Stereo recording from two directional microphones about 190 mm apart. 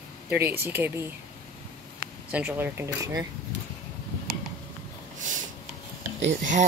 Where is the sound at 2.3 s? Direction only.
10° right (ahead or behind).